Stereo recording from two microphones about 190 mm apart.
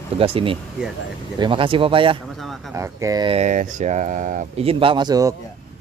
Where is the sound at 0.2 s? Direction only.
30° right (ahead or behind).